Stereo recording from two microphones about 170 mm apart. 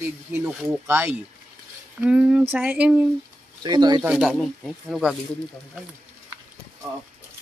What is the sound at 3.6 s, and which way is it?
Speech, 25° right (ahead or behind).